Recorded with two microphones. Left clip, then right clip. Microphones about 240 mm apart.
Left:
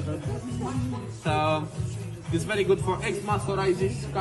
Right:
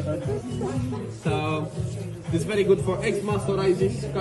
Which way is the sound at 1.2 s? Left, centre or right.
Centre.